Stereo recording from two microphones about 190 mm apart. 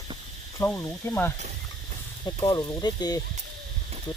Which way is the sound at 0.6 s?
10° left (ahead or behind).